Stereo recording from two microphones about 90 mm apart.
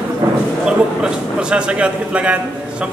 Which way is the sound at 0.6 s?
10° right (ahead or behind).